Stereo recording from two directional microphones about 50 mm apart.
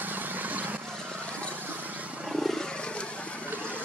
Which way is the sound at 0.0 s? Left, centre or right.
Right.